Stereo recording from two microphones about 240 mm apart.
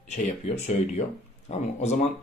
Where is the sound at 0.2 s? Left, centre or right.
Left.